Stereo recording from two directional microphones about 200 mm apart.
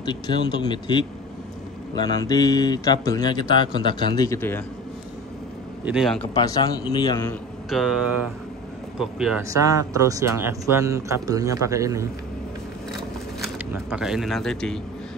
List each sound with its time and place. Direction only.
0.0 s speech: 20° left (ahead or behind)
5.9 s speech: centre (ahead or behind)
6.3 s speech: 20° left (ahead or behind)
7.2 s a man's voice: centre (ahead or behind)
9.5 s speech: 15° right (ahead or behind)
13.9 s speech: centre (ahead or behind)